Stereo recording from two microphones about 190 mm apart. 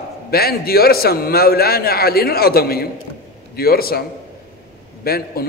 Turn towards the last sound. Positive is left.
turn(degrees=55)  # may be behind; listen again after turning